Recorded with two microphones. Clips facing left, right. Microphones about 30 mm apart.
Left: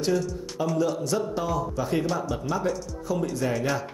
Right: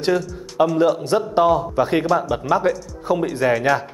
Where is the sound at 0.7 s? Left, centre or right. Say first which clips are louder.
Right 8 dB; right.